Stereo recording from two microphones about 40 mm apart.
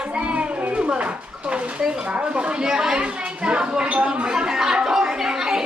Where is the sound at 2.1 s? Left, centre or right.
Right.